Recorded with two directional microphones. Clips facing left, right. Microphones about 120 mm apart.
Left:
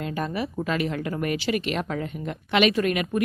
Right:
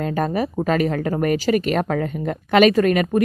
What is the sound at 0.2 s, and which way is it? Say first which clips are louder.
Speech: right 6 dB; 45° right (ahead or behind).